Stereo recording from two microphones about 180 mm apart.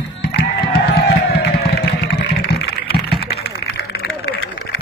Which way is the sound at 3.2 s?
65° left (ahead or behind).